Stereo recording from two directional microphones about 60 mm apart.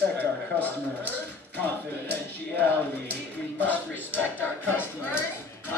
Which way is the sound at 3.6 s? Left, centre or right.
Left.